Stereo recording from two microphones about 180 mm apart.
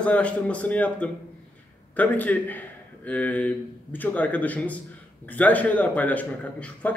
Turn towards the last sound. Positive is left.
turn(degrees=5)  # may be behind; listen again after turning